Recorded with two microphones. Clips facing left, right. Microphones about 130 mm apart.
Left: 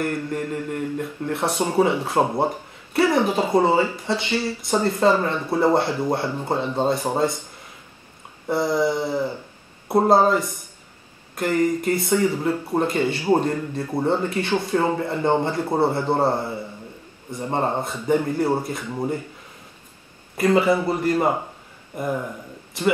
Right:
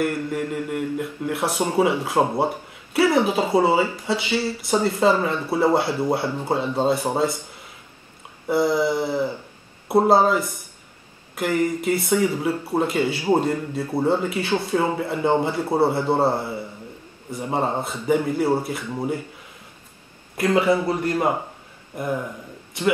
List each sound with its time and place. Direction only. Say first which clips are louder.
0.0 s speech: right 1 dB; 5° right (ahead or behind)
8.5 s speech: right 1 dB; 5° right (ahead or behind)
20.3 s speech: left 1 dB; centre (ahead or behind)